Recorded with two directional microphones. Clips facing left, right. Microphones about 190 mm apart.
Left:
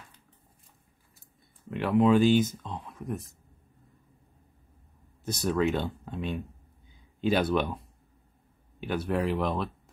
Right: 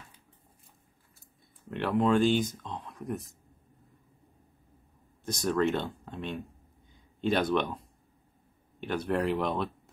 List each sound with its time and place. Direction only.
1.7 s speech: centre (ahead or behind)
5.2 s speech: 5° left (ahead or behind)